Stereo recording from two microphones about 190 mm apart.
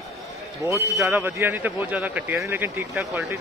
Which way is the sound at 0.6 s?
15° right (ahead or behind).